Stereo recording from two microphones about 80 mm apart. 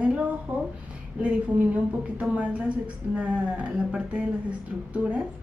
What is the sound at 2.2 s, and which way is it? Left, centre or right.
A woman's voice, centre.